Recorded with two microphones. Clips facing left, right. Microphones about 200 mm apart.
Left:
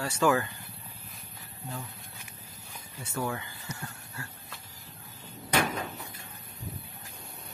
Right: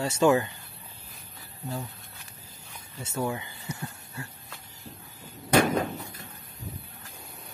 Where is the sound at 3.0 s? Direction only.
20° right (ahead or behind).